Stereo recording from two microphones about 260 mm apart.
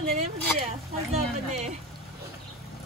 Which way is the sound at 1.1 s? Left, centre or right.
Right.